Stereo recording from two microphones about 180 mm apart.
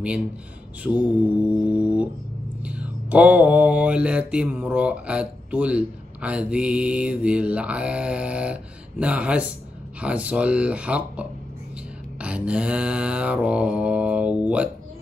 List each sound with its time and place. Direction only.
1.0 s mantra: 5° right (ahead or behind)